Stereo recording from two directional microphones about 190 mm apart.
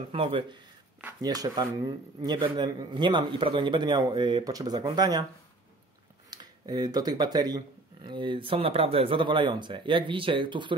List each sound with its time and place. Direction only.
0.1 s speech: 30° right (ahead or behind)
6.3 s speech: 20° right (ahead or behind)